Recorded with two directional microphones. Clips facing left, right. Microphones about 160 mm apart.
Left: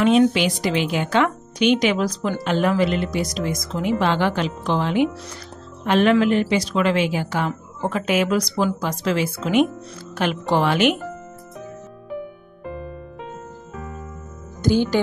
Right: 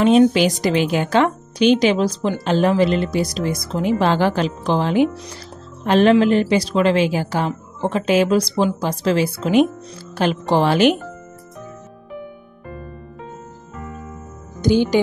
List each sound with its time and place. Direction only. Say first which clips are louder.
0.0 s a woman's voice: right 3 dB; 35° right (ahead or behind)
14.6 s speech: right 3 dB; 20° right (ahead or behind)